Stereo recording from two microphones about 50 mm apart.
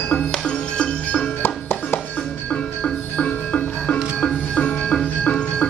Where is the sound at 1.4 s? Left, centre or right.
Left.